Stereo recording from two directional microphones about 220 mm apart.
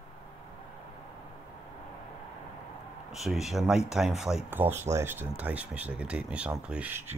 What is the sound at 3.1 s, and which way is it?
Speech, centre (ahead or behind).